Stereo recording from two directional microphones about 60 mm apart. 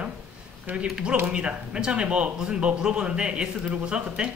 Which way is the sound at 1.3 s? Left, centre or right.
Centre.